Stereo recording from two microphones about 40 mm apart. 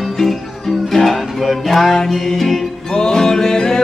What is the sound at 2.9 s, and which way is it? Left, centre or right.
Music, centre.